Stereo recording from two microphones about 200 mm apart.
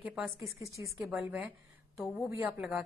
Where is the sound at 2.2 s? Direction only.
10° right (ahead or behind).